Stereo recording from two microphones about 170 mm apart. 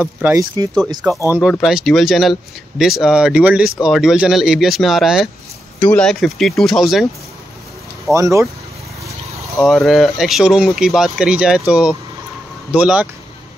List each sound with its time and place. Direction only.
0.0 s speech: 15° right (ahead or behind)
1.4 s speech: centre (ahead or behind)
8.1 s speech: 15° right (ahead or behind)
9.7 s speech: centre (ahead or behind)